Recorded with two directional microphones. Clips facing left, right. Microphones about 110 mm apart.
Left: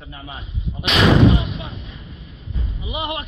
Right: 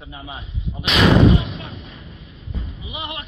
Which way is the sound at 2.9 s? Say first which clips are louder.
Left 6 dB; 65° left (ahead or behind).